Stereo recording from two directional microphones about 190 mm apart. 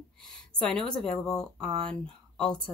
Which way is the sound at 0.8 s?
Centre (ahead or behind).